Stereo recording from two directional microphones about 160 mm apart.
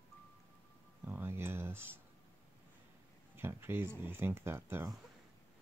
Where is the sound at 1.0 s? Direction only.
15° right (ahead or behind).